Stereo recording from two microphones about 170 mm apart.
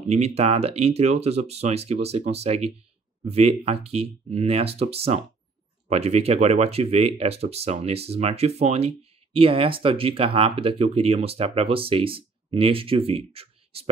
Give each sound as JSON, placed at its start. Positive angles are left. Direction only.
{"t": 0.1, "sound": "speech", "side_deg": -40}